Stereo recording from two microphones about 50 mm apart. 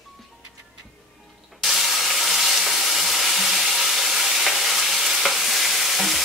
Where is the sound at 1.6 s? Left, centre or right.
Centre.